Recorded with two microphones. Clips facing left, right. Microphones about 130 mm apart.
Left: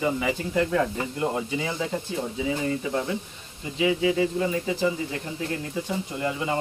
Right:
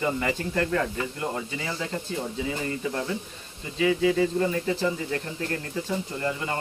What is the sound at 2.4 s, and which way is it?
Speech, 5° left (ahead or behind).